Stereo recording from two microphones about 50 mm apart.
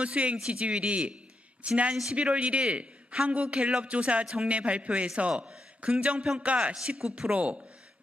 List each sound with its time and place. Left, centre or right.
0.0 s a man's voice: right
7.0 s speech: centre
7.3 s a man's voice: right